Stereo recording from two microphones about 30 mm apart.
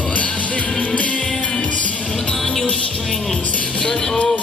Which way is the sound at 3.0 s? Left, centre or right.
Centre.